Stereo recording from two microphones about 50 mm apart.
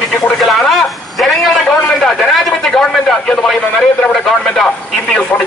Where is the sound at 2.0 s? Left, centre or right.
Centre.